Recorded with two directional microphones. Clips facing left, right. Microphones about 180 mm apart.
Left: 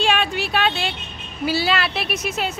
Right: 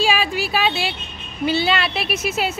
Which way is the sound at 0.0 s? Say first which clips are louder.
Right 1 dB; centre (ahead or behind).